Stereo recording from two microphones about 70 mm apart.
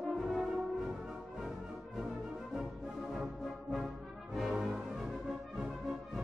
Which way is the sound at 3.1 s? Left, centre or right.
Centre.